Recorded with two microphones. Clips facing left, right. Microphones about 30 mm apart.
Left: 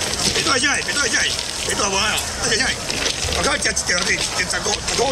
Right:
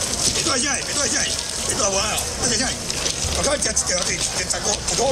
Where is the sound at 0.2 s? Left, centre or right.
Left.